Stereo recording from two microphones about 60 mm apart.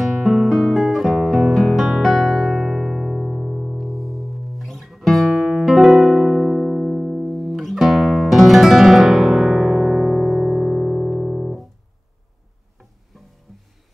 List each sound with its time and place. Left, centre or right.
0.0 s guitar: centre
7.3 s guitar: centre
13.5 s music: centre